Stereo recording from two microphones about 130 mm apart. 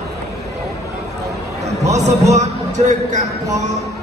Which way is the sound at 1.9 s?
60° right (ahead or behind).